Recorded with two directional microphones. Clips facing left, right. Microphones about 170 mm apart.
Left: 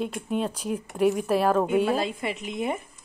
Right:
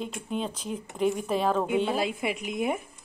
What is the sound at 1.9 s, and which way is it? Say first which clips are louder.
Speech: even; 5° right (ahead or behind).